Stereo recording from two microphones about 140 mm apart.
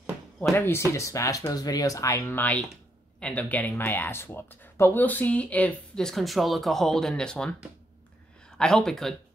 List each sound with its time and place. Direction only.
0.6 s a man's voice: 20° left (ahead or behind); by 9.1 s centre (ahead or behind)